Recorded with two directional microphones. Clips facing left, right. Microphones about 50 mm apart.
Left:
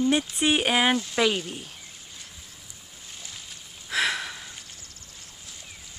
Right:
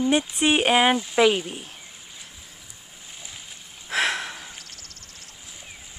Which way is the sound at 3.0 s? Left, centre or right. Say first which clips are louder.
Right 1 dB; centre.